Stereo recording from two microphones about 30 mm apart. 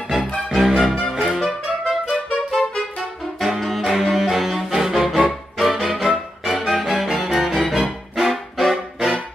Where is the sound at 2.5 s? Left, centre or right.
Centre.